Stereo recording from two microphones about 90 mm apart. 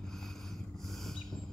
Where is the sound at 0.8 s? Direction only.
5° left (ahead or behind).